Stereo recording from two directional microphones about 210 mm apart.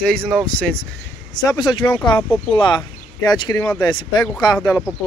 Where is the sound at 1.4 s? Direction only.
20° left (ahead or behind).